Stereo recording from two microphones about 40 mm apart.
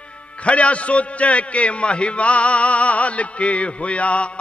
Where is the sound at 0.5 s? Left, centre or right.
Left.